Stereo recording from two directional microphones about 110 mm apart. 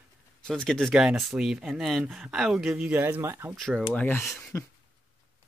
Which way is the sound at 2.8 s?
20° right (ahead or behind).